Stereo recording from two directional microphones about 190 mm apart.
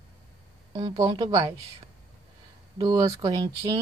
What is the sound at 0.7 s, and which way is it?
Speech, 25° right (ahead or behind).